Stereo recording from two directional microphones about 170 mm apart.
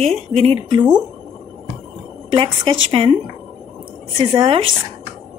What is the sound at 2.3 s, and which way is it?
Speech, 30° right (ahead or behind).